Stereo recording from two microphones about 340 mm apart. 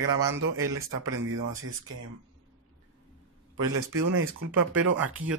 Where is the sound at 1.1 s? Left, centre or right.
Right.